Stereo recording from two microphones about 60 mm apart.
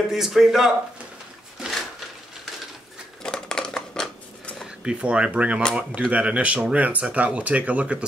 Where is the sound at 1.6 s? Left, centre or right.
Centre.